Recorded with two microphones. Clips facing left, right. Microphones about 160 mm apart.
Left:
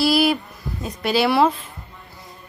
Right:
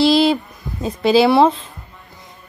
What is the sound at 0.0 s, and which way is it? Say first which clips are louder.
A woman's voice: right 4 dB; 25° right (ahead or behind).